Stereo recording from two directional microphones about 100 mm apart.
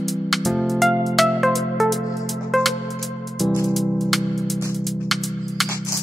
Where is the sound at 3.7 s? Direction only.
Centre (ahead or behind).